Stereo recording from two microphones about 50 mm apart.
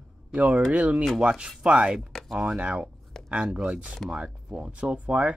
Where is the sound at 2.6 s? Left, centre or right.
Right.